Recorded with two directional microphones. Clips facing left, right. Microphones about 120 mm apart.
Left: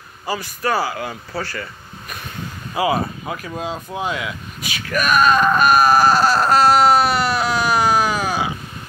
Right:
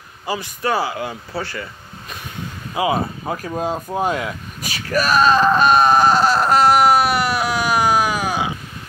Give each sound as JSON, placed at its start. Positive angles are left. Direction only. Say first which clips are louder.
{"t": 0.3, "sound": "speech", "louder": "even", "side_deg": -20}
{"t": 3.3, "sound": "speech", "louder": "right 4 dB", "side_deg": -40}